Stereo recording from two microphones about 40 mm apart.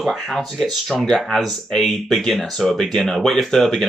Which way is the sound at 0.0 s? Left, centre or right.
Centre.